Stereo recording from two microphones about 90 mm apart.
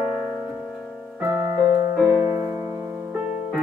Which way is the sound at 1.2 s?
40° right (ahead or behind).